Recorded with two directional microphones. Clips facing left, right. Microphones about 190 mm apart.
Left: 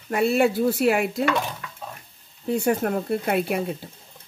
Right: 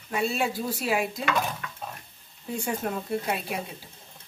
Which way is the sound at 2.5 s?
65° left (ahead or behind).